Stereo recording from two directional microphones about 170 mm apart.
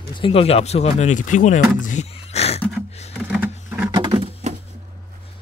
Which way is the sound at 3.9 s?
30° right (ahead or behind).